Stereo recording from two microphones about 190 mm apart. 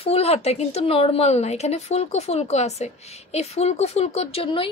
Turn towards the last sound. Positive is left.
turn(degrees=30)  # may be behind; listen again after turning